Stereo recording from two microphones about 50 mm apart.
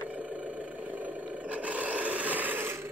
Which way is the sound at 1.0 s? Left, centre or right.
Right.